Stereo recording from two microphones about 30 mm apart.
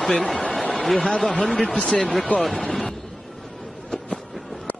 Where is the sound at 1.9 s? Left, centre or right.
Left.